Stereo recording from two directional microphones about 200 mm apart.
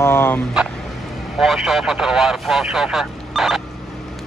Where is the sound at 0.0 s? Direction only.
10° left (ahead or behind).